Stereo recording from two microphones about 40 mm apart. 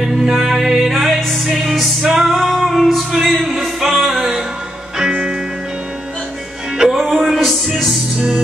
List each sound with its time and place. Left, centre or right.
0.0 s music: centre
7.0 s music: centre